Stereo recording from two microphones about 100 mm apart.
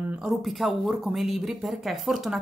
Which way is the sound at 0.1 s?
5° right (ahead or behind).